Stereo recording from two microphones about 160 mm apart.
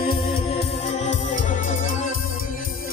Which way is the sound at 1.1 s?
50° left (ahead or behind).